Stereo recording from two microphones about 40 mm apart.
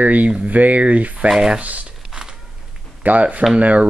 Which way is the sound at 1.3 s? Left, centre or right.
Centre.